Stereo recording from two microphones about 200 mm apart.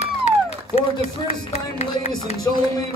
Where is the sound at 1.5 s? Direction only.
30° left (ahead or behind).